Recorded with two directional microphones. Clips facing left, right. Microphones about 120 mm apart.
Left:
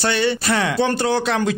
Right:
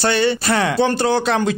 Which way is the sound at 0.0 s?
35° right (ahead or behind).